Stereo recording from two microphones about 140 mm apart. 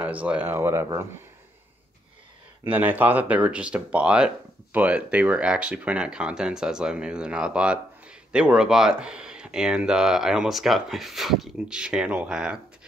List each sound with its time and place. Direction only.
0.0 s speech: 10° right (ahead or behind)
2.6 s speech: 15° right (ahead or behind)